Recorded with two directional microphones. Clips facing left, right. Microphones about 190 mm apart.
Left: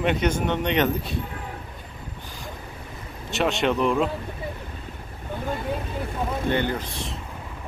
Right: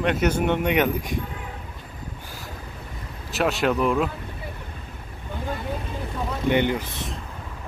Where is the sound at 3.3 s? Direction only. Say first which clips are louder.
Even; centre (ahead or behind).